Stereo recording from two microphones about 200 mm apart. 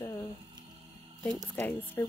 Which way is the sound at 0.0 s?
15° left (ahead or behind).